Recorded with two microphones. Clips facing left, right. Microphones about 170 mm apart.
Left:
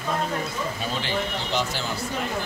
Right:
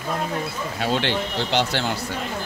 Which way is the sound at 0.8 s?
70° right (ahead or behind).